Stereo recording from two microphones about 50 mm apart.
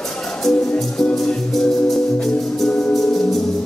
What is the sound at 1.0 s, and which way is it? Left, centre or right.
Music, centre.